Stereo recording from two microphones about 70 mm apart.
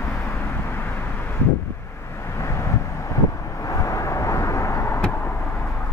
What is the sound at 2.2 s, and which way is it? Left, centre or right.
Vehicle, left.